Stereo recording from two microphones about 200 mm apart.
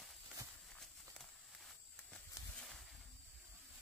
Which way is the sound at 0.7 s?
Centre (ahead or behind).